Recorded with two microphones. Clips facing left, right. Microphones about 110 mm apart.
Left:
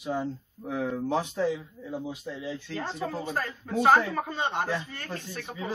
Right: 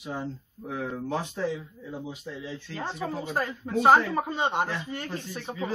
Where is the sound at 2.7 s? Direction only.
20° right (ahead or behind).